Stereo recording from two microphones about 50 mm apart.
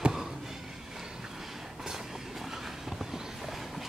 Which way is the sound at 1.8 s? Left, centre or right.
Centre.